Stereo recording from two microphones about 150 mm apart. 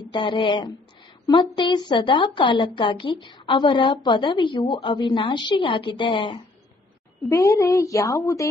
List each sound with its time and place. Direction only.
0.1 s a woman's voice: 35° left (ahead or behind)
7.2 s a woman's voice: 20° left (ahead or behind)